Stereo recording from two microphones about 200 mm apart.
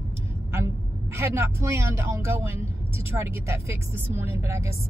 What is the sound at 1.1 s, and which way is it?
A woman's voice, 15° right (ahead or behind).